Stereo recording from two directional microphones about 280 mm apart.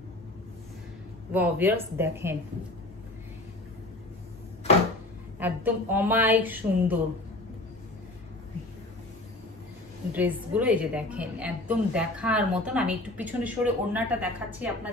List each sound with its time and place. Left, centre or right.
1.3 s a woman's voice: centre
5.4 s a woman's voice: centre
10.1 s a woman's voice: centre